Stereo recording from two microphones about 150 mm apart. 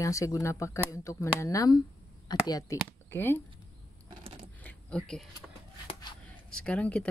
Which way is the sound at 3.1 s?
15° left (ahead or behind).